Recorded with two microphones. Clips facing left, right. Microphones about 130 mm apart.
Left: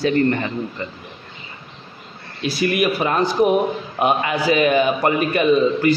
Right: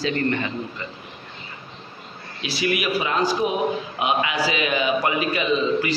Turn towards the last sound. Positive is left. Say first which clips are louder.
# left 5 dB
turn(degrees=50)  # may be behind; listen again after turning